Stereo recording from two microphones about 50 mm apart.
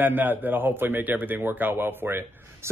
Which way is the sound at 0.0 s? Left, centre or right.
Right.